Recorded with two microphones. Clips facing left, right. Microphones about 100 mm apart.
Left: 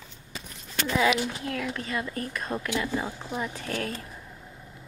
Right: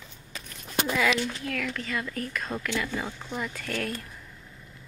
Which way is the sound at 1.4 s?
30° left (ahead or behind).